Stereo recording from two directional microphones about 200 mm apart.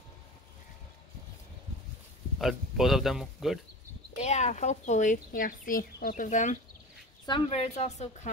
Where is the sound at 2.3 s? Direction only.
Centre (ahead or behind).